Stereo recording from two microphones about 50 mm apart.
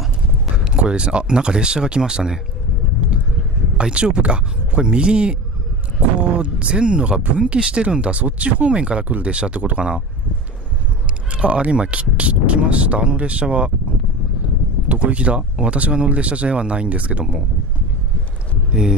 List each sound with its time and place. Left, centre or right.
0.6 s speech: centre
3.7 s speech: right
11.3 s speech: right
14.9 s speech: right
18.7 s speech: centre